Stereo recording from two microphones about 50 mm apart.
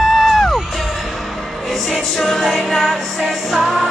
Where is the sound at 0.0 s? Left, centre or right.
Centre.